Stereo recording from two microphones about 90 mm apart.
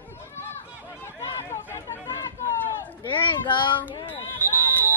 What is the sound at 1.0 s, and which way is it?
Run, 30° left (ahead or behind).